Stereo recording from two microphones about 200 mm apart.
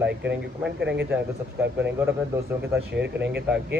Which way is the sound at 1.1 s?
10° right (ahead or behind).